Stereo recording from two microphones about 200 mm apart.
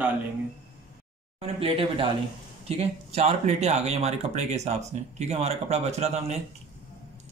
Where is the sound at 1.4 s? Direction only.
30° right (ahead or behind).